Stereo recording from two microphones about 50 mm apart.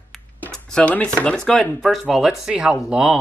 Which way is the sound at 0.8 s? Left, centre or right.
Left.